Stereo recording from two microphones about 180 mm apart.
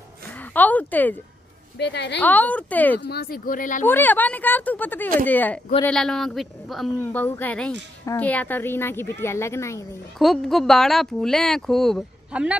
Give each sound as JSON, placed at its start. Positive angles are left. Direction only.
{"t": 0.5, "sound": "a sound", "side_deg": 10}
{"t": 1.8, "sound": "a woman's voice", "side_deg": 70}
{"t": 2.1, "sound": "a woman's voice", "side_deg": 10}
{"t": 3.0, "sound": "speech", "side_deg": 60}
{"t": 3.8, "sound": "a woman's voice", "side_deg": 10}
{"t": 7.0, "sound": "a woman's voice", "side_deg": 10}
{"t": 10.1, "sound": "speech", "side_deg": 0}